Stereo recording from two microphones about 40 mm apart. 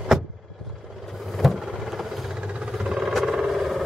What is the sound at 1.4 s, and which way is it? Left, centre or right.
Vehicle, centre.